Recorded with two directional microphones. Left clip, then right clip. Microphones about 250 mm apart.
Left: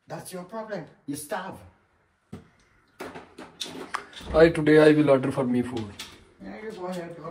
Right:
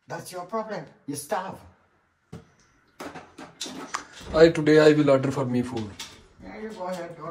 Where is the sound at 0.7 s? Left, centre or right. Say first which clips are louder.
Even; right.